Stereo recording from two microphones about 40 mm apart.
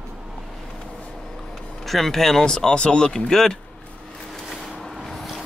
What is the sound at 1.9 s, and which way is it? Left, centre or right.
Speech, centre.